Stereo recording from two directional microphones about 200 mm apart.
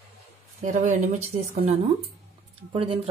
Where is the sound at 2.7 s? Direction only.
30° right (ahead or behind).